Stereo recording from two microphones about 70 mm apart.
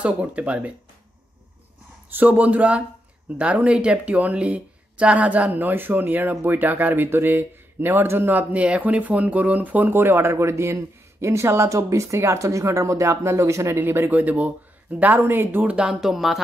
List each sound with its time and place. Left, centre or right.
0.0 s speech: centre
2.0 s speech: right
15.6 s speech: centre